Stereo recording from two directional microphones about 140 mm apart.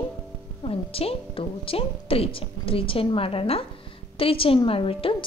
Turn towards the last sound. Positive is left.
turn(degrees=40)  # may be behind; listen again after turning